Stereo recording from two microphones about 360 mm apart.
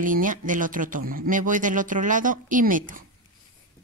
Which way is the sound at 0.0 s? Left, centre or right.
Right.